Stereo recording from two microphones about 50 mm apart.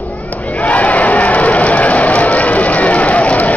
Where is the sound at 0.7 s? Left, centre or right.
Left.